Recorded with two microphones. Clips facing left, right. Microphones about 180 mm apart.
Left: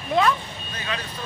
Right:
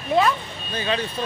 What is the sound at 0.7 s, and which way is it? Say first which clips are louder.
Speech: right 7 dB; 30° right (ahead or behind).